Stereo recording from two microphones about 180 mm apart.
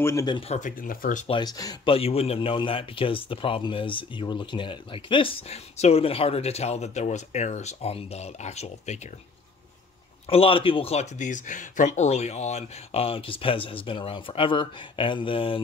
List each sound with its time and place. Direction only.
0.0 s speech: 15° left (ahead or behind)
0.4 s speech: 40° left (ahead or behind)
1.2 s speech: 25° left (ahead or behind)
2.0 s speech: 35° left (ahead or behind)
10.2 s speech: 30° left (ahead or behind)